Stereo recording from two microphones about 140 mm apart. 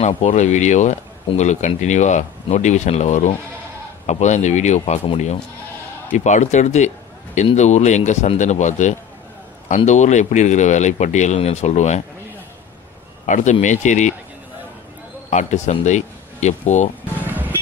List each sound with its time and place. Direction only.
0.0 s speech: 55° left (ahead or behind)
13.3 s speech: 60° left (ahead or behind)
15.2 s speech: 60° left (ahead or behind)